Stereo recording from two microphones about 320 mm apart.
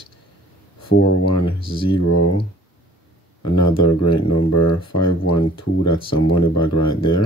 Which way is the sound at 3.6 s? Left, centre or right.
Left.